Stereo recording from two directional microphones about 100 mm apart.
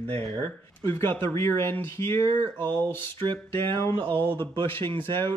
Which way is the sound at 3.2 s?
55° right (ahead or behind).